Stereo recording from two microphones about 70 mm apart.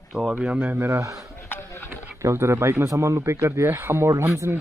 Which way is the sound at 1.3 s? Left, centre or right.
Left.